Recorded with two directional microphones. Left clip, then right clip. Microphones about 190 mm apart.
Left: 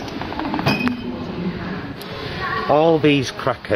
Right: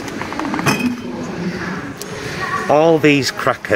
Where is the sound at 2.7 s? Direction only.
Centre (ahead or behind).